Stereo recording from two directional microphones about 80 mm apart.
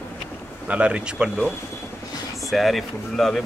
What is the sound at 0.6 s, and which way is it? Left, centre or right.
Speech, centre.